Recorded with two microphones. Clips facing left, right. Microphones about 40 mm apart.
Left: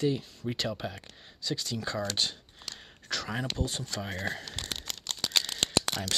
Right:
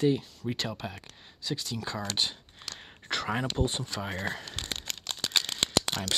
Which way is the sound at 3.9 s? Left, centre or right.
Centre.